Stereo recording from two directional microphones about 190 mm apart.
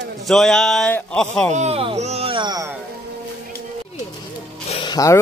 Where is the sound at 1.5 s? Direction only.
35° right (ahead or behind).